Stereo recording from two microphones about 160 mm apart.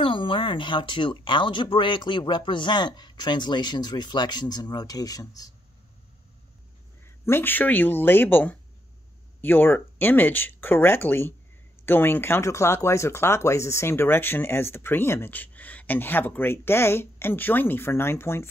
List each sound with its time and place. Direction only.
0.0 s speech: 30° left (ahead or behind)
7.1 s speech: 15° left (ahead or behind)